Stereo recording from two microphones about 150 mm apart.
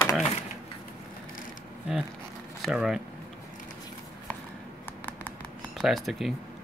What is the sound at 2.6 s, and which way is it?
Speech, 5° right (ahead or behind).